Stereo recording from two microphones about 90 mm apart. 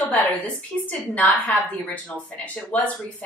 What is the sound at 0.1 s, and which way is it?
A woman's voice, 15° left (ahead or behind).